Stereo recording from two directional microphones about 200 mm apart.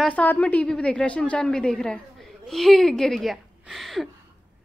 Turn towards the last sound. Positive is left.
turn(degrees=0)  # may be behind; listen again after turning